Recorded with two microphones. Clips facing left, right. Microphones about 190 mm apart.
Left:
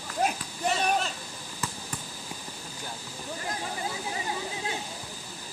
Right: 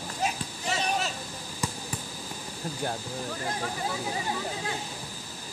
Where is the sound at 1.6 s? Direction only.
15° right (ahead or behind).